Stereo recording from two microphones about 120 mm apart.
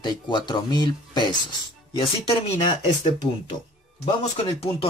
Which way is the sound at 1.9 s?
50° left (ahead or behind).